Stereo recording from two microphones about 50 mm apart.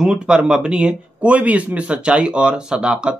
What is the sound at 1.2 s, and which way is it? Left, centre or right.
Speech, right.